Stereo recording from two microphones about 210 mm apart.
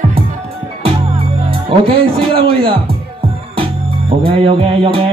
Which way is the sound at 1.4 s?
25° right (ahead or behind).